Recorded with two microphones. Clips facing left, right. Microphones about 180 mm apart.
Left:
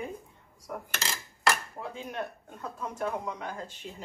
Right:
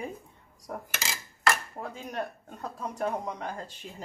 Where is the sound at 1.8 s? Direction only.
40° right (ahead or behind).